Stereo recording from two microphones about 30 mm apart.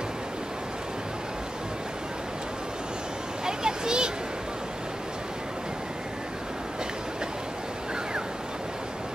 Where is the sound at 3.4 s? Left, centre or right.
Right.